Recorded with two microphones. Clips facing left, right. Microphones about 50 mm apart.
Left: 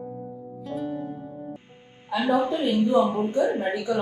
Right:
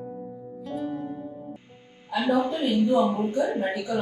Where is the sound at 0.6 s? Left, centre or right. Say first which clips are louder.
Left 1 dB; centre.